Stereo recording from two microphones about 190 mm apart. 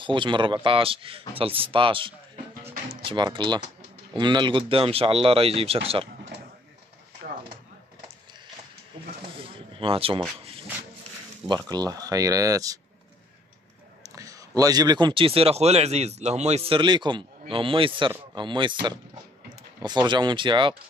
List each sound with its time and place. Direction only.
0.0 s a man's voice: 25° right (ahead or behind)
9.4 s a sound: 30° right (ahead or behind)
11.4 s speech: 20° right (ahead or behind)
14.0 s a man's voice: 20° right (ahead or behind)